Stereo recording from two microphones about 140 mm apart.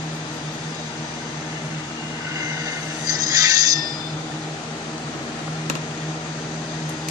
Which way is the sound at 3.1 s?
25° right (ahead or behind).